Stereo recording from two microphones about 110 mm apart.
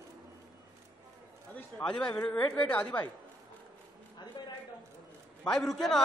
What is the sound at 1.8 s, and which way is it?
A woman's voice, 10° left (ahead or behind).